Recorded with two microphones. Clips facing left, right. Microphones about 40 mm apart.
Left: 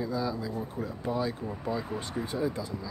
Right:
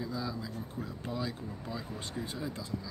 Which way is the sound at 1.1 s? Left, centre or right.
Left.